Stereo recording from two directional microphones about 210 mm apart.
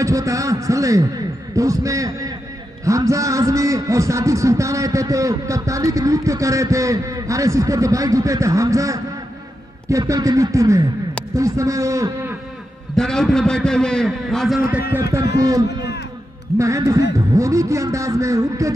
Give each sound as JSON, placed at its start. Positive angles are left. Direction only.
{"t": 0.0, "sound": "a sound", "side_deg": -15}
{"t": 1.5, "sound": "a man's voice", "side_deg": -15}
{"t": 12.9, "sound": "a man's voice", "side_deg": 5}